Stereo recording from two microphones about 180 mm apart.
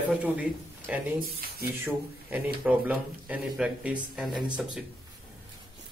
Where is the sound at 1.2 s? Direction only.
55° right (ahead or behind).